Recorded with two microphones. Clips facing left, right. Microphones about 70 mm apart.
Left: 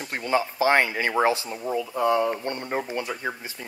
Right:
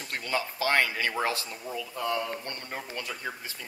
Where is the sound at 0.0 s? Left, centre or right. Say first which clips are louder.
Left 7 dB; left.